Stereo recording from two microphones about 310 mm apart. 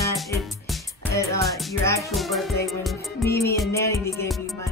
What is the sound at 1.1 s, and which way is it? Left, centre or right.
Music, centre.